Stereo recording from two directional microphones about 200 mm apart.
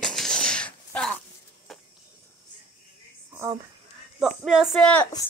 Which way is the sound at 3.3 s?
15° right (ahead or behind).